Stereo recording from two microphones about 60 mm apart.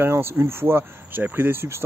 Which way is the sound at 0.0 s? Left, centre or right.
Right.